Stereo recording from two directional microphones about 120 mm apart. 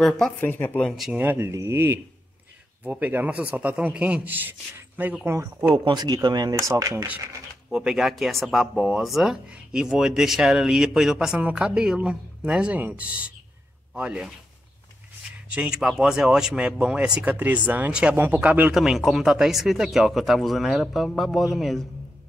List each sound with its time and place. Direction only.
0.4 s speech: 15° left (ahead or behind)
0.8 s speech: centre (ahead or behind)
1.2 s a man's voice: 15° right (ahead or behind)
5.9 s speech: 35° right (ahead or behind)
7.7 s a man's voice: 5° right (ahead or behind)
15.5 s a man's voice: 5° right (ahead or behind)
18.8 s speech: centre (ahead or behind)